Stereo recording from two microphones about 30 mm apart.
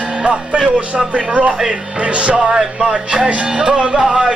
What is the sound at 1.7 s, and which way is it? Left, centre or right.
Music, right.